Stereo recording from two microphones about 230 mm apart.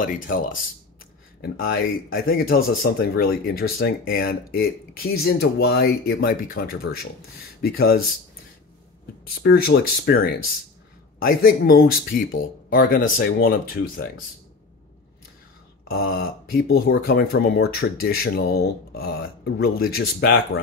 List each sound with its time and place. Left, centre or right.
0.0 s speech: left
9.4 s speech: left
15.9 s speech: left